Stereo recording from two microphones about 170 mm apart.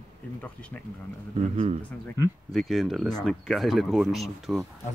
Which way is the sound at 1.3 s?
40° right (ahead or behind).